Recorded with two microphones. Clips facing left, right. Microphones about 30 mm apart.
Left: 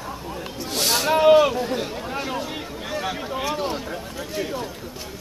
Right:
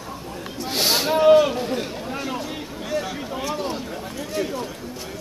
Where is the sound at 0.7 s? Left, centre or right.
Centre.